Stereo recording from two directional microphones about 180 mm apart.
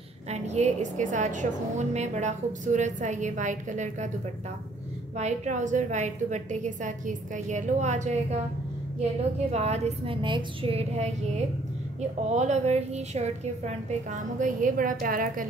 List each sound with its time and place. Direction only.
0.3 s a woman's voice: 40° right (ahead or behind)
5.1 s a woman's voice: 40° right (ahead or behind)
9.5 s a woman's voice: 35° right (ahead or behind)